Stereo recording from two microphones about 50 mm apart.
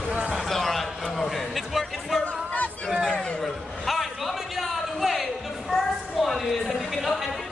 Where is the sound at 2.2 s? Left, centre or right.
Left.